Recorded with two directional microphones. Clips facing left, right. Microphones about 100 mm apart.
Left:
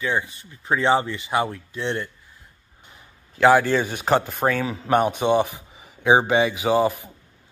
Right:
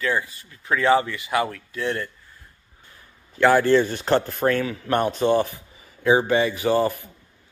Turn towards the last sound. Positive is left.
turn(degrees=15)  # may be behind; listen again after turning